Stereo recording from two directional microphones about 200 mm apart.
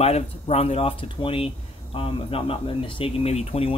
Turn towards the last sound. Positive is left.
turn(degrees=30)  # may be behind; listen again after turning